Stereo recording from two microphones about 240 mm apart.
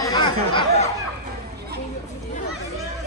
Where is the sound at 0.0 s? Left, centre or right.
Centre.